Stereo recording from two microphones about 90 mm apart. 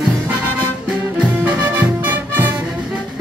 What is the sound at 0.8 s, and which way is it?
Music, 10° right (ahead or behind).